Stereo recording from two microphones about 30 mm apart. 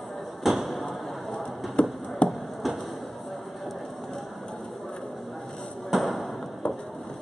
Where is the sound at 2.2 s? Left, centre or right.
Left.